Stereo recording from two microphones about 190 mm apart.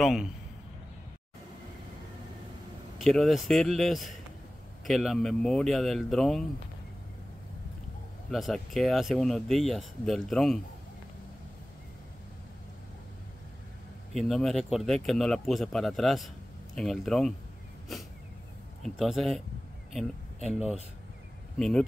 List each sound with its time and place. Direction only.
0.0 s speech: centre (ahead or behind)
3.0 s speech: centre (ahead or behind)
8.3 s speech: centre (ahead or behind)
14.1 s speech: centre (ahead or behind)
18.9 s speech: centre (ahead or behind)
21.5 s speech: centre (ahead or behind)